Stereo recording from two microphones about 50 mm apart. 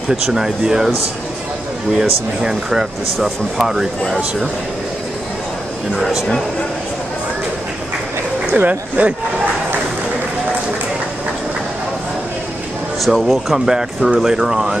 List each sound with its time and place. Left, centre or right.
0.1 s speech: centre
2.4 s speech: centre
5.9 s speech: centre
8.5 s speech: right
13.0 s speech: centre
13.7 s speech: centre